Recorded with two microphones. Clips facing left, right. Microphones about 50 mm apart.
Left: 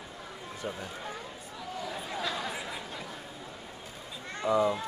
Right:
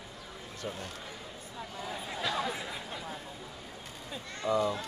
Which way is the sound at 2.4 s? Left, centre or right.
Centre.